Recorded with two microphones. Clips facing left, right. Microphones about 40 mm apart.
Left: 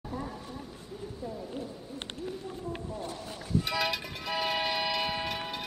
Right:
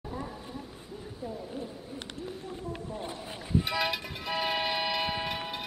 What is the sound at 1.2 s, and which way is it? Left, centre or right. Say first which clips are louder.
Speech: right 1 dB; centre.